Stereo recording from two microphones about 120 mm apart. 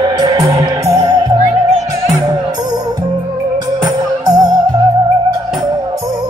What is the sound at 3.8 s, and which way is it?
Music, 30° right (ahead or behind).